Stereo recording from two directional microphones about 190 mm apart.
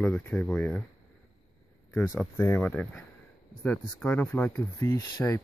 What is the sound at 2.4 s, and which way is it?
Speech, 10° left (ahead or behind).